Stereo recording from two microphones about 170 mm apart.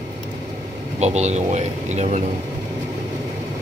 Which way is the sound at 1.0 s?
40° right (ahead or behind).